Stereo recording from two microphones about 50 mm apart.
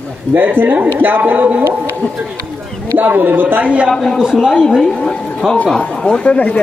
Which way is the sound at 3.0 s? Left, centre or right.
Right.